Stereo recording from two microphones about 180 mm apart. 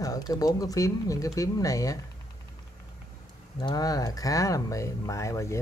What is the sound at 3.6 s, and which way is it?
Speech, 20° left (ahead or behind).